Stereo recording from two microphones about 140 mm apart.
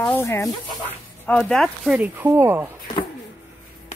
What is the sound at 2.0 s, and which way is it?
Speech, 15° right (ahead or behind).